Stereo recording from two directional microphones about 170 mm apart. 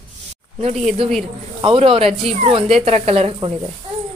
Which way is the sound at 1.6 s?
35° right (ahead or behind).